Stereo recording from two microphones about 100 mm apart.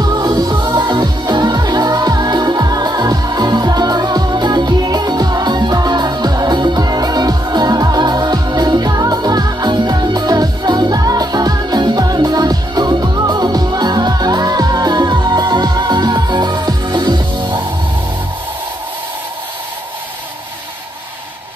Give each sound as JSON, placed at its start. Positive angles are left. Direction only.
{"t": 0.0, "sound": "music", "side_deg": -40}